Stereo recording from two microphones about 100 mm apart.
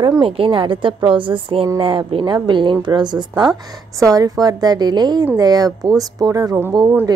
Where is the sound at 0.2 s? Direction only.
65° right (ahead or behind).